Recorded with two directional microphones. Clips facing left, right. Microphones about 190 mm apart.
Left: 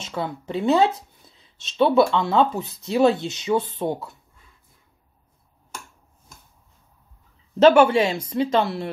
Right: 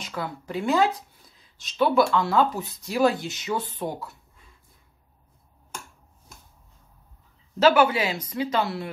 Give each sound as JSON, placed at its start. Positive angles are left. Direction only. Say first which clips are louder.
{"t": 0.0, "sound": "speech", "louder": "left 4 dB", "side_deg": 25}
{"t": 7.6, "sound": "speech", "louder": "left 5 dB", "side_deg": -10}
{"t": 8.1, "sound": "speech", "louder": "left 5 dB", "side_deg": 30}